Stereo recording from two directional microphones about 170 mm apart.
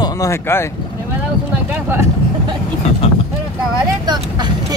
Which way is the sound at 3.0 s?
35° left (ahead or behind).